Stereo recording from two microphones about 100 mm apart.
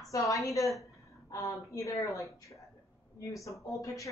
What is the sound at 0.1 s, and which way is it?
A woman's voice, 35° left (ahead or behind).